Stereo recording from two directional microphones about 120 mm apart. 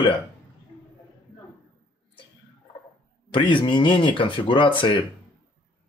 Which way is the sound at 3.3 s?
45° left (ahead or behind).